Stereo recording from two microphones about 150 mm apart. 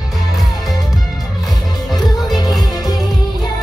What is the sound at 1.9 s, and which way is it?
Music, 25° left (ahead or behind).